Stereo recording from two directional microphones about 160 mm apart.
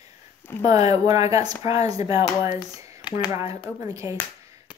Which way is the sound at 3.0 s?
30° left (ahead or behind).